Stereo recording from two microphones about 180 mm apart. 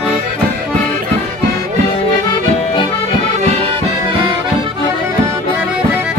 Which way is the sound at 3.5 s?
35° right (ahead or behind).